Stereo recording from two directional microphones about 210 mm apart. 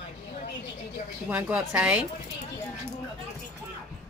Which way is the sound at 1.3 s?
5° right (ahead or behind).